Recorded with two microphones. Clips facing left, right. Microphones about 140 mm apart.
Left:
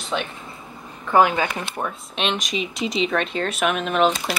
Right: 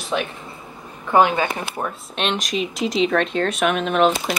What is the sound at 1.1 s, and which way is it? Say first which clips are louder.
Speech: right 1 dB; 20° right (ahead or behind).